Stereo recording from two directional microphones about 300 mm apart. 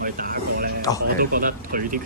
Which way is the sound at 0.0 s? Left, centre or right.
Right.